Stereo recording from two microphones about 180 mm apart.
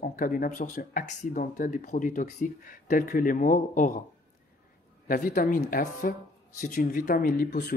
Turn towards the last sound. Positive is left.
turn(degrees=55)  # may be behind; listen again after turning